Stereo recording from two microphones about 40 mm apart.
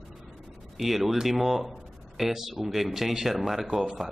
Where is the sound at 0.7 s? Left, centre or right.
Centre.